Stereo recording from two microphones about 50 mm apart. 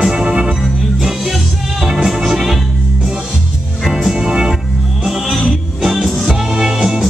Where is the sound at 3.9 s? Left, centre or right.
Centre.